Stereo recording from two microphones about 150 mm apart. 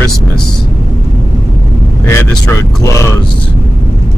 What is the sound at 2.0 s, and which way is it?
Speech, 20° left (ahead or behind).